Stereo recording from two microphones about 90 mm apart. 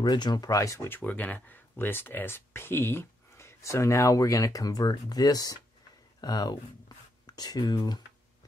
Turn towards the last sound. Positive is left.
turn(degrees=50)  # may be behind; listen again after turning